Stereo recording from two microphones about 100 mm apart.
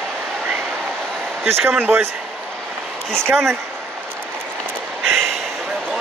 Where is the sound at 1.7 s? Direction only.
20° right (ahead or behind).